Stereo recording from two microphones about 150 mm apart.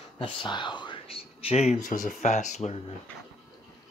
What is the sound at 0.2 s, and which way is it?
Speech, 30° left (ahead or behind).